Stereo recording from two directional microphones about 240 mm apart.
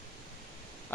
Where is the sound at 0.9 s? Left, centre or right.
Centre.